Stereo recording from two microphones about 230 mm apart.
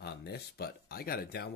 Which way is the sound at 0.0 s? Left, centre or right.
Left.